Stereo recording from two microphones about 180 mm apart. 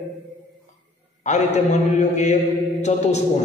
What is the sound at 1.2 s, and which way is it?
Mantra, 40° left (ahead or behind).